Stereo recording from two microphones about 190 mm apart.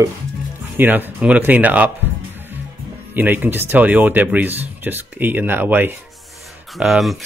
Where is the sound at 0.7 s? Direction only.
10° right (ahead or behind).